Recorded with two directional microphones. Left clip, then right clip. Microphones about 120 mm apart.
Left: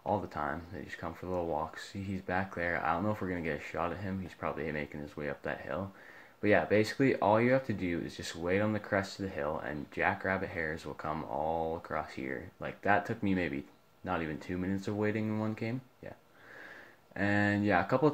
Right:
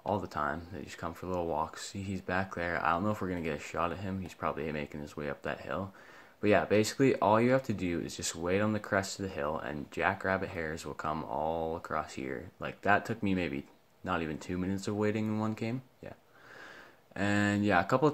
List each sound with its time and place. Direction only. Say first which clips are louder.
0.1 s speech: right 1 dB; 30° right (ahead or behind)
17.1 s speech: even; 30° right (ahead or behind)